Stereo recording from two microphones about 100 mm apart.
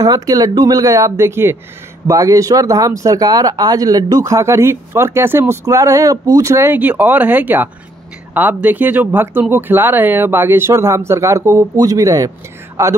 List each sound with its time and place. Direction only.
0.0 s speech: 40° right (ahead or behind)